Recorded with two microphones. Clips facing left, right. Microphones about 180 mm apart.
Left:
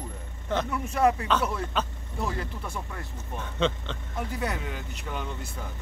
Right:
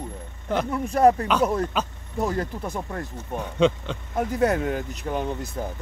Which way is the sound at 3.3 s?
10° right (ahead or behind).